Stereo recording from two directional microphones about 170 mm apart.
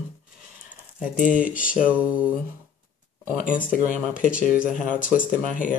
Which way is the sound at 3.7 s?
50° left (ahead or behind).